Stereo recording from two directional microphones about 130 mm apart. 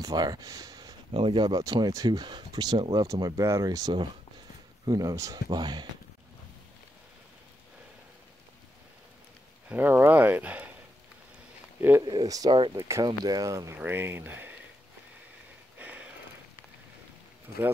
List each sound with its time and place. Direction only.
0.0 s speech: 30° right (ahead or behind)
1.1 s speech: 40° right (ahead or behind)
9.7 s speech: 15° right (ahead or behind)
12.0 s speech: 35° right (ahead or behind)
13.7 s speech: 15° right (ahead or behind)
15.8 s a sound: 10° right (ahead or behind)